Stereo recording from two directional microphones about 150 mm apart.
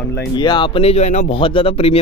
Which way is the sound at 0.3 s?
30° left (ahead or behind).